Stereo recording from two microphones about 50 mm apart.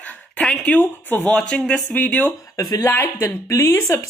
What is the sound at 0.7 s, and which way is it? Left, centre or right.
Speech, left.